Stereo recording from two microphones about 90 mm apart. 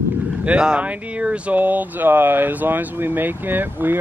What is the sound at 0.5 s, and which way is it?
Speech, 10° right (ahead or behind).